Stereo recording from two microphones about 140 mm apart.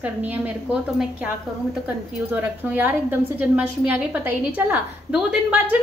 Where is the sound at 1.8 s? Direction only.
15° right (ahead or behind).